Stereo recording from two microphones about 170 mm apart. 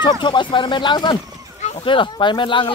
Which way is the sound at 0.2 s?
30° left (ahead or behind).